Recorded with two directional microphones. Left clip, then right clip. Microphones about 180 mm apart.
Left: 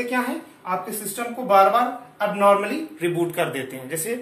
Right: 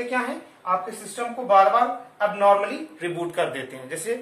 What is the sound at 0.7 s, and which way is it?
A man's voice, 5° right (ahead or behind).